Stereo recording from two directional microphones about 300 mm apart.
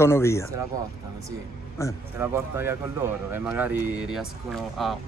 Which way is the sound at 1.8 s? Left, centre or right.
Centre.